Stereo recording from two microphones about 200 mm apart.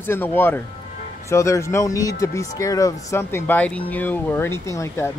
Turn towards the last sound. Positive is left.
turn(degrees=15)  # may be behind; listen again after turning